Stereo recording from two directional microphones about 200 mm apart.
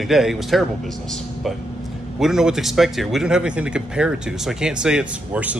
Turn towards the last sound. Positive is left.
turn(degrees=-5)  # may be behind; listen again after turning